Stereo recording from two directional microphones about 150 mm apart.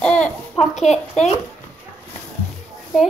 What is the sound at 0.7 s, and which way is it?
Speech, 50° left (ahead or behind).